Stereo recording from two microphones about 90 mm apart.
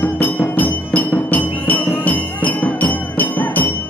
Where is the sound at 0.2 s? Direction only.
20° left (ahead or behind).